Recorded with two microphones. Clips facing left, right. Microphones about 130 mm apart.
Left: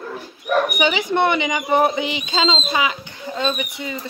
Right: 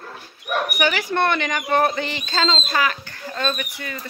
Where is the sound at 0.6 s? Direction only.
20° left (ahead or behind).